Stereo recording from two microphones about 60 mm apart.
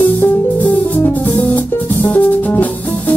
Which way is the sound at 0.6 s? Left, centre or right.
Left.